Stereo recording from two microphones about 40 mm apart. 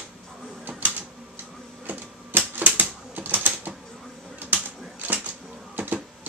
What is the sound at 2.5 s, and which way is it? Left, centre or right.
Typewriter, right.